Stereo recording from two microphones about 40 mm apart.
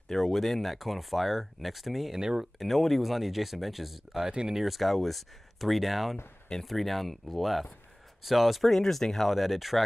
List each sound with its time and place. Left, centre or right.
0.1 s speech: centre
2.1 s speech: centre
2.6 s speech: centre
4.3 s speech: right
4.6 s speech: centre